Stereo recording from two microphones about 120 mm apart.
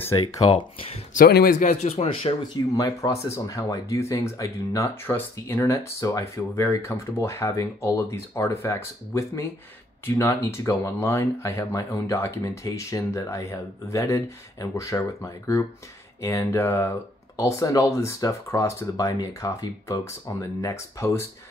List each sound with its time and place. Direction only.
1.1 s speech: 90° left; by 2.3 s 60° left (ahead or behind)
2.5 s speech: 30° left (ahead or behind)